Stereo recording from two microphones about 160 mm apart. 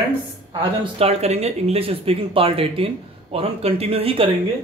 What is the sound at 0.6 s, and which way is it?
Speech, 35° right (ahead or behind).